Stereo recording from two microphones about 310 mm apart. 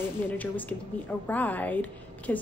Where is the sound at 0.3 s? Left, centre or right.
Centre.